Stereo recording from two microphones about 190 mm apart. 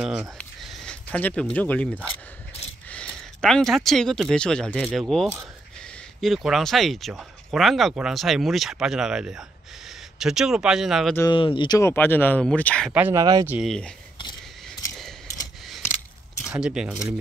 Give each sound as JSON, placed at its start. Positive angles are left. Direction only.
{"t": 0.0, "sound": "speech", "side_deg": -5}
{"t": 11.1, "sound": "speech", "side_deg": 25}
{"t": 11.9, "sound": "speech", "side_deg": 10}
{"t": 12.9, "sound": "speech", "side_deg": -10}
{"t": 13.2, "sound": "speech", "side_deg": -20}
{"t": 13.5, "sound": "speech", "side_deg": 0}
{"t": 16.4, "sound": "speech", "side_deg": -5}